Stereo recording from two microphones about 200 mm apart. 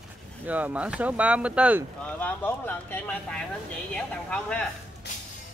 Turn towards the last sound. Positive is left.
turn(degrees=5)  # may be behind; listen again after turning